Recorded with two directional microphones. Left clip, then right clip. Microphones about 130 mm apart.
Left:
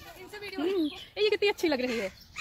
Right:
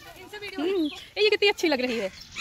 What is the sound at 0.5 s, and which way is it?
Speech, 5° right (ahead or behind).